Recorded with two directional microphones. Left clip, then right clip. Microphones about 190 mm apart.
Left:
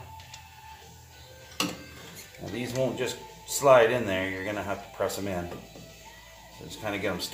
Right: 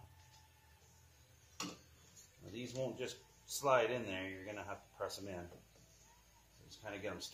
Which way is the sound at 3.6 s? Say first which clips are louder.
Left 15 dB; 25° right (ahead or behind).